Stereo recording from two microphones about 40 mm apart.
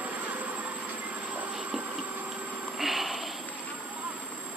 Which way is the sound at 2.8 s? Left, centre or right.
Centre.